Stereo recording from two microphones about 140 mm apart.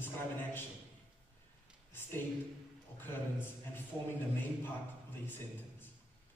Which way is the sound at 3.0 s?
15° left (ahead or behind).